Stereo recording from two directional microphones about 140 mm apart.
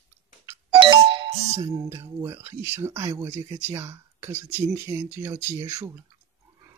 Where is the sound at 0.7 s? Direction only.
35° right (ahead or behind).